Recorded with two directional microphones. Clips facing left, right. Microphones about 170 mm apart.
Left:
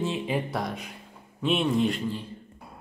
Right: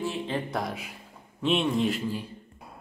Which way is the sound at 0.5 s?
Centre (ahead or behind).